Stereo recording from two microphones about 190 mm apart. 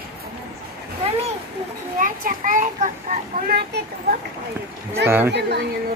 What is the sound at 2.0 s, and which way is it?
Speech, 45° right (ahead or behind).